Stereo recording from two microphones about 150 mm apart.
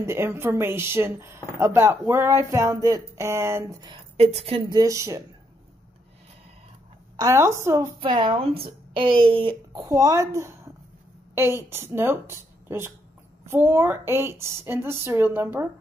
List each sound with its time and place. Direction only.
0.0 s speech: 15° right (ahead or behind)
4.2 s speech: 45° right (ahead or behind)
4.7 s speech: 20° right (ahead or behind)
7.2 s speech: 20° right (ahead or behind)
8.0 s speech: 35° right (ahead or behind); by 15.7 s 15° right (ahead or behind)